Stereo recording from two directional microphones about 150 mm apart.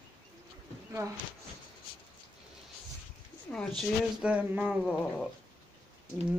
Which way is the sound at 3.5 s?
5° left (ahead or behind).